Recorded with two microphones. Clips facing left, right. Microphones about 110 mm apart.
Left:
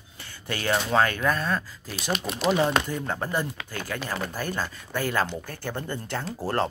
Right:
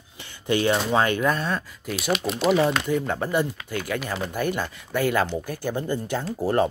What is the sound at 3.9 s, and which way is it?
Speech, 20° right (ahead or behind).